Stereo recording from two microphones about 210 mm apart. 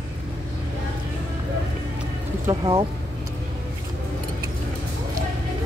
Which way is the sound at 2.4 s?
20° right (ahead or behind).